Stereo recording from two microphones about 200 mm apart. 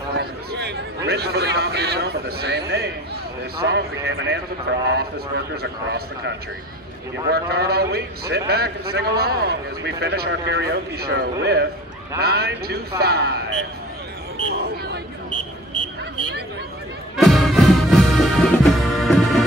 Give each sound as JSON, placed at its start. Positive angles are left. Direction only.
{"t": 0.1, "sound": "a man's voice", "side_deg": -55}
{"t": 14.5, "sound": "a sound", "side_deg": -55}
{"t": 17.2, "sound": "music", "side_deg": 0}